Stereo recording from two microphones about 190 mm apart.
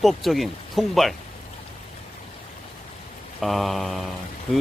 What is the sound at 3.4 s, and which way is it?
Speech, centre (ahead or behind).